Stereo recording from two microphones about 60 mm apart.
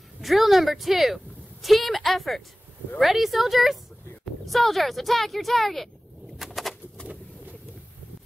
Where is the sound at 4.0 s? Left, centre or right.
Left.